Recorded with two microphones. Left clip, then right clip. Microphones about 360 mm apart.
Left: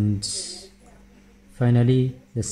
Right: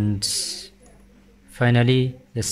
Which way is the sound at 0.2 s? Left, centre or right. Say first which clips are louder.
Right 5 dB; right.